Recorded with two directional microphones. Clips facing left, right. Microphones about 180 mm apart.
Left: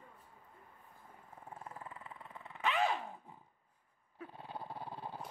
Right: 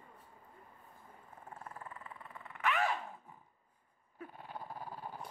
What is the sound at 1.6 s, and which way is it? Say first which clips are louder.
Dog: even; 20° left (ahead or behind).